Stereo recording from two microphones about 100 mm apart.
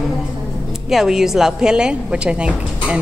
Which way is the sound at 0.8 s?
5° right (ahead or behind).